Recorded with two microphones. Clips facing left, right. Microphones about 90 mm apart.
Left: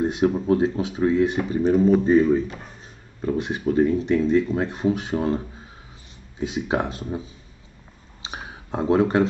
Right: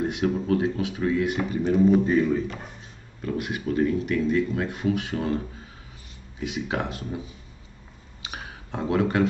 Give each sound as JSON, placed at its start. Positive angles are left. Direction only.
{"t": 0.0, "sound": "speech", "side_deg": 25}
{"t": 6.4, "sound": "speech", "side_deg": 30}
{"t": 8.2, "sound": "a sound", "side_deg": 25}